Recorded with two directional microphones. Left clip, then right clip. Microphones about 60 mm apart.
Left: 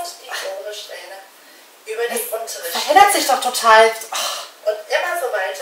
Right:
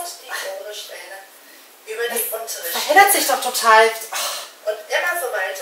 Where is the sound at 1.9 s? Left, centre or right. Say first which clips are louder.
Left 2 dB; left.